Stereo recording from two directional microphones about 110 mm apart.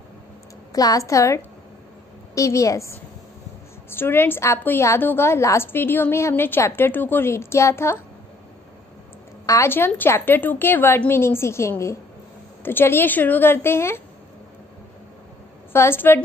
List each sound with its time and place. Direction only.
0.7 s a woman's voice: 30° left (ahead or behind)
9.5 s a woman's voice: 20° left (ahead or behind)
15.7 s a woman's voice: 20° left (ahead or behind)